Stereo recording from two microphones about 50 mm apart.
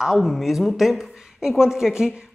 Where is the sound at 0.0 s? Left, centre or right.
Centre.